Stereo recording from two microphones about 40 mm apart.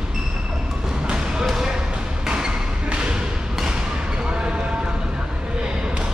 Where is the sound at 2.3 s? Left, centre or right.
Right.